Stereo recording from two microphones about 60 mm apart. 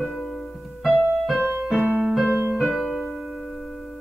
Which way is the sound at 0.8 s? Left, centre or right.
Centre.